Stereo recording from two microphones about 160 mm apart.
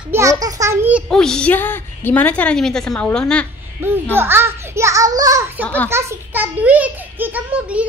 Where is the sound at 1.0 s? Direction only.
5° left (ahead or behind).